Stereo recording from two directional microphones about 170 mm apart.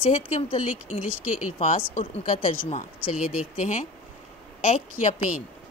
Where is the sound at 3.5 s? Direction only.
45° left (ahead or behind).